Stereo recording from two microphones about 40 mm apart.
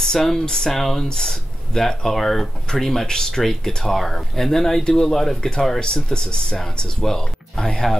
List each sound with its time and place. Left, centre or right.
0.0 s speech: centre
5.8 s speech: centre